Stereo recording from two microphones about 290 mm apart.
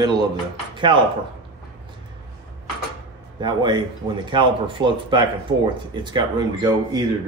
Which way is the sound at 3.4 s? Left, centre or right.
Centre.